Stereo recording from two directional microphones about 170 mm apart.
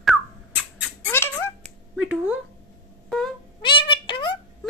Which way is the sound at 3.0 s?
Centre (ahead or behind).